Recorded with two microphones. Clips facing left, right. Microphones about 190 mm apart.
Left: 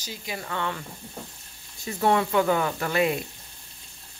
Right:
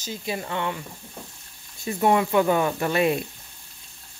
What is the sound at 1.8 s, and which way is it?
Speech, 15° right (ahead or behind).